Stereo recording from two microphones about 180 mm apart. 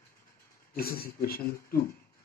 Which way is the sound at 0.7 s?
55° left (ahead or behind).